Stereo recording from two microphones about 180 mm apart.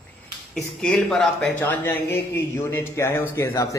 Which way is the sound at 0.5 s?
5° left (ahead or behind).